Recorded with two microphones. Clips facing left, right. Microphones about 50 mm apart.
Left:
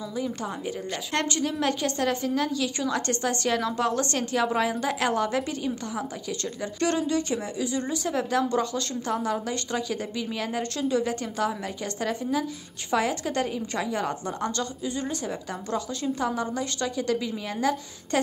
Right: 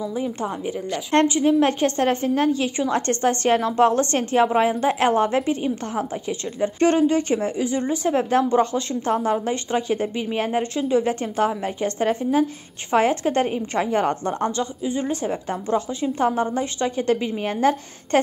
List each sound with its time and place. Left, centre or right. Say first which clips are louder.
0.1 s a woman's voice: right 5 dB; right
14.6 s a woman's voice: right 5 dB; right
16.2 s a woman's voice: right 9 dB; right